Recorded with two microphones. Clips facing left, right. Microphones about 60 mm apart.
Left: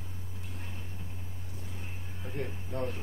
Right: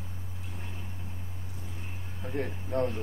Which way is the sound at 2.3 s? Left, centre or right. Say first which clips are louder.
Right 6 dB; right.